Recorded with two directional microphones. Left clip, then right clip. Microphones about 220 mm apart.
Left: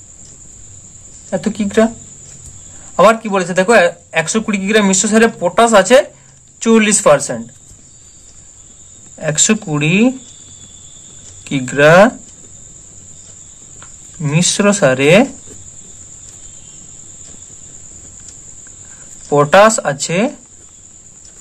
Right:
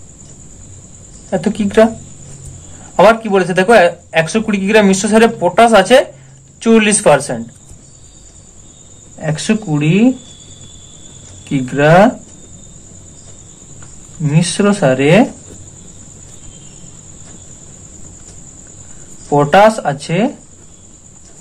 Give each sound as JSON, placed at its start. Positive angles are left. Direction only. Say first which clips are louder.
{"t": 1.3, "sound": "speech", "louder": "right 2 dB", "side_deg": 15}
{"t": 3.0, "sound": "speech", "louder": "right 1 dB", "side_deg": 20}
{"t": 9.2, "sound": "speech", "louder": "left 3 dB", "side_deg": 30}
{"t": 11.4, "sound": "speech", "louder": "left 2 dB", "side_deg": 30}
{"t": 14.2, "sound": "speech", "louder": "left 1 dB", "side_deg": 30}
{"t": 19.2, "sound": "speech", "louder": "even", "side_deg": 30}